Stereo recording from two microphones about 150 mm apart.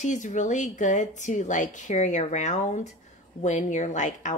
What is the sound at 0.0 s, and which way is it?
A woman's voice, 55° left (ahead or behind).